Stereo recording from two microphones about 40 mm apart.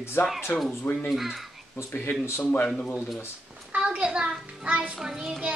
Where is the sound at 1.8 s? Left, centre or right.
Left.